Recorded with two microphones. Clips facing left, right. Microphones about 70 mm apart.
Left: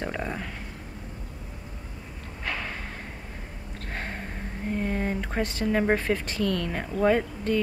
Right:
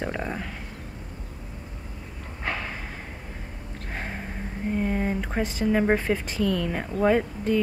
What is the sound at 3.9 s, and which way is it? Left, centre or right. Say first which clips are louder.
Speech: right 1 dB; centre.